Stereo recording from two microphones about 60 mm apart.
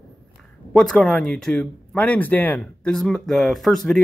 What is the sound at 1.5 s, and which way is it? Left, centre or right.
Speech, left.